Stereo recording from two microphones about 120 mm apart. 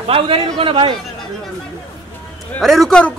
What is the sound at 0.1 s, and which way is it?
Speech, 50° right (ahead or behind).